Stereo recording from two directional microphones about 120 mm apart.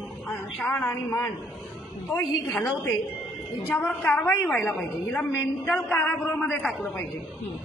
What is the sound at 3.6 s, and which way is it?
A woman's voice, 20° left (ahead or behind).